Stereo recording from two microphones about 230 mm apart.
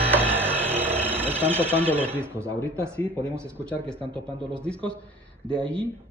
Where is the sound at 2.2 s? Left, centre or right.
Centre.